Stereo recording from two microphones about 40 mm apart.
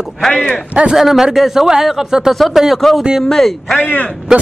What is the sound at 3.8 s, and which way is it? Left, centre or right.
Speech, left.